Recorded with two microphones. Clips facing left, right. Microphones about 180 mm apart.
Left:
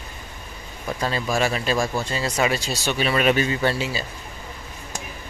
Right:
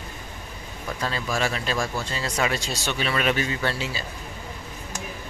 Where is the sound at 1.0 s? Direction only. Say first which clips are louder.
Left 4 dB; 15° left (ahead or behind).